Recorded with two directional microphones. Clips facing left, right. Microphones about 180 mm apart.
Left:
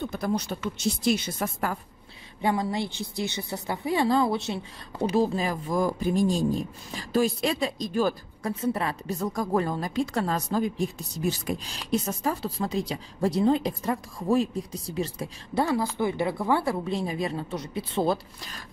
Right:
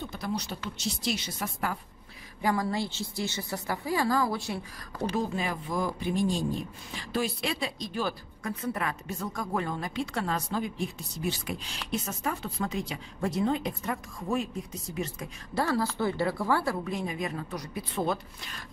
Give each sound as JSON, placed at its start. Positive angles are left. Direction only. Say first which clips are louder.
{"t": 0.1, "sound": "a woman's voice", "louder": "left 5 dB", "side_deg": 50}
{"t": 2.4, "sound": "a woman's voice", "louder": "left 2 dB", "side_deg": 25}
{"t": 8.5, "sound": "a woman's voice", "louder": "left 5 dB", "side_deg": 30}
{"t": 15.5, "sound": "a woman's voice", "louder": "left 3 dB", "side_deg": 20}